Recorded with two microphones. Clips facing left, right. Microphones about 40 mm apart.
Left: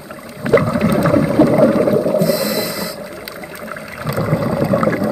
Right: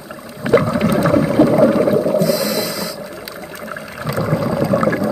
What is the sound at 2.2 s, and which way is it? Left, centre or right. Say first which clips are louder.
Whale vocalization: even; left.